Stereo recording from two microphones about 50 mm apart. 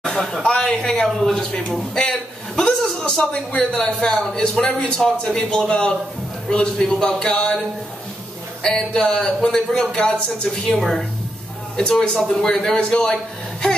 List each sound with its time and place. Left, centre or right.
0.0 s a sound: centre
1.3 s a man's voice: centre
8.6 s a man's voice: centre
10.7 s a man's voice: centre